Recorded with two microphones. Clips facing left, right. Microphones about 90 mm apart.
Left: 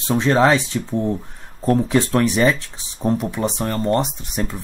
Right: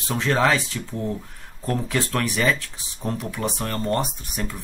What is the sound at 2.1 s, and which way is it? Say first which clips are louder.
Speech: left 5 dB; 25° left (ahead or behind).